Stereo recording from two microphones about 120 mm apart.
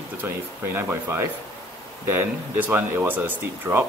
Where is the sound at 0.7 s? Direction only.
20° right (ahead or behind).